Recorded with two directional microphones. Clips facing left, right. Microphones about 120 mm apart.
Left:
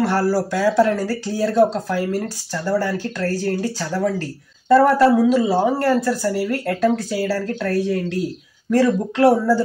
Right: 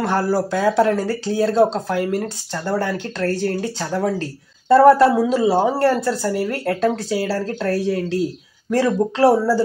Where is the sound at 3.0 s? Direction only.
25° right (ahead or behind).